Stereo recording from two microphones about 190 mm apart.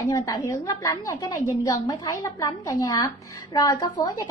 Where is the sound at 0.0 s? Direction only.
15° left (ahead or behind).